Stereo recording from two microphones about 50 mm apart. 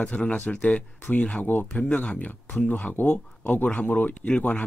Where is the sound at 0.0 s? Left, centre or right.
Left.